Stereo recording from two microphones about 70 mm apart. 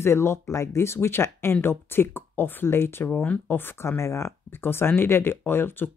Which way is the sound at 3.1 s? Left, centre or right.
Left.